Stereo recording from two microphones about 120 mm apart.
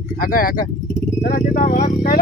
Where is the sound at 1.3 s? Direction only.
90° left.